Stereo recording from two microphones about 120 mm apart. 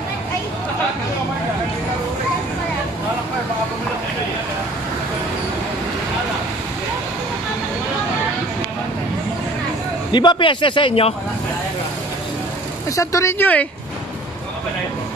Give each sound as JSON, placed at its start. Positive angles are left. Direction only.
{"t": 10.1, "sound": "a man's voice", "side_deg": 40}
{"t": 12.9, "sound": "speech", "side_deg": 25}